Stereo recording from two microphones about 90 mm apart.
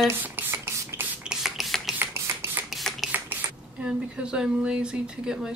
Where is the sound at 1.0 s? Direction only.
5° right (ahead or behind).